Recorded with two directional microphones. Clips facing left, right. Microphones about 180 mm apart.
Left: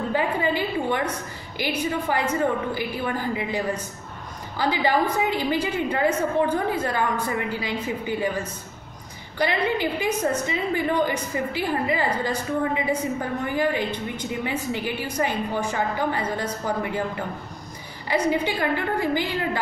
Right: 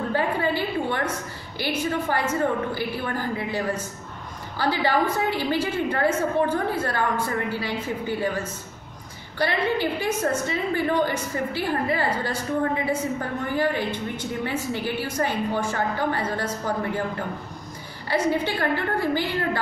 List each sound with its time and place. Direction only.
0.1 s a woman's voice: 15° left (ahead or behind)
9.4 s a woman's voice: 15° left (ahead or behind)
18.0 s a woman's voice: 15° left (ahead or behind)